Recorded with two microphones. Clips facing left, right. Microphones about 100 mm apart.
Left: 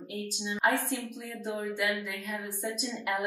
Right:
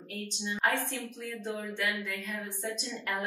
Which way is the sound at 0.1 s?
15° left (ahead or behind).